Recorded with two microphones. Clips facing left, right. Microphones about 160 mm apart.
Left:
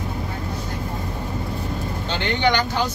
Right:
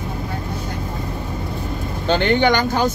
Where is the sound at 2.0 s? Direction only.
50° right (ahead or behind).